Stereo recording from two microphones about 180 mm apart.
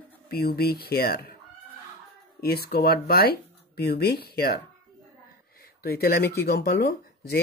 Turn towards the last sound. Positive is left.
turn(degrees=60)  # may be behind; listen again after turning